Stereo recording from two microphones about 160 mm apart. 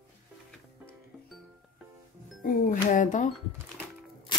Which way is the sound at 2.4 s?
60° left (ahead or behind).